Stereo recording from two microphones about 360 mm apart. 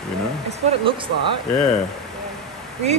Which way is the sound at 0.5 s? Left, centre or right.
Centre.